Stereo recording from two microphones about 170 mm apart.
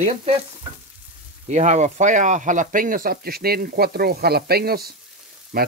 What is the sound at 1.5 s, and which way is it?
Speech, 45° right (ahead or behind).